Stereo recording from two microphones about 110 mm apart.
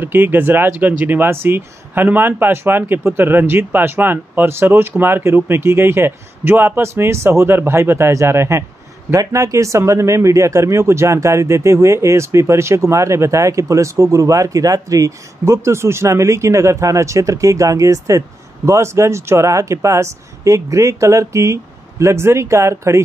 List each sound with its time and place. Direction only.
0.0 s speech: 20° right (ahead or behind)